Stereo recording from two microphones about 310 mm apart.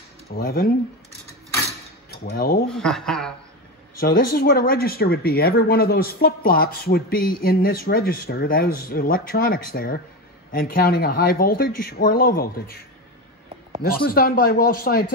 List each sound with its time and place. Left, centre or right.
0.4 s speech: left
2.2 s speech: left
2.7 s speech: centre
4.0 s speech: left
13.8 s speech: left